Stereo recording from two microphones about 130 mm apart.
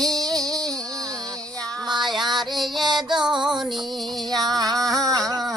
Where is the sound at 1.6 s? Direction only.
5° left (ahead or behind).